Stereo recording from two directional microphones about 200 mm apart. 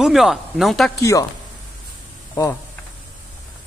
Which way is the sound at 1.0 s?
15° left (ahead or behind).